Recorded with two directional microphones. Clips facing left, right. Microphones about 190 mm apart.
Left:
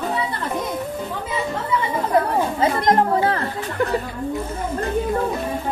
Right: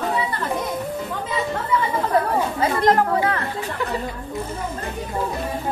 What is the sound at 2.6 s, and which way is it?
Speech, 30° left (ahead or behind).